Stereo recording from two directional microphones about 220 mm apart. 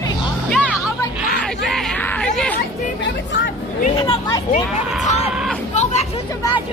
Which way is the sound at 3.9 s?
20° left (ahead or behind).